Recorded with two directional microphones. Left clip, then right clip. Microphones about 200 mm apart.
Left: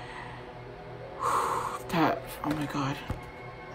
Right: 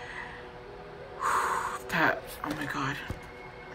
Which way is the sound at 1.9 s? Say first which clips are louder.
Right 1 dB; 25° left (ahead or behind).